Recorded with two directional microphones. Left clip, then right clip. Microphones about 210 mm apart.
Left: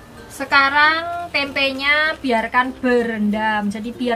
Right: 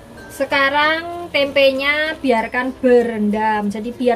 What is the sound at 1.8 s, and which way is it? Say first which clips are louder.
A woman's voice: left 1 dB; 15° left (ahead or behind).